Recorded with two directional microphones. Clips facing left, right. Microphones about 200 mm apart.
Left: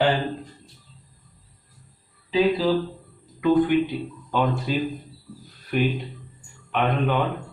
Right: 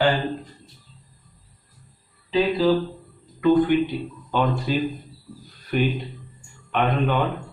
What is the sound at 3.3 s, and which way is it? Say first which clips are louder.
Speech: right 1 dB; 5° left (ahead or behind).